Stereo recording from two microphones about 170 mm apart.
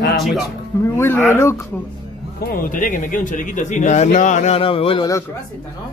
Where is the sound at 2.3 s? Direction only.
55° left (ahead or behind); by 5.0 s 35° left (ahead or behind).